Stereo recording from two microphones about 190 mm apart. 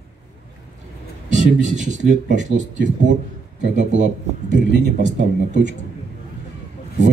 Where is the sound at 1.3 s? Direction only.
40° right (ahead or behind).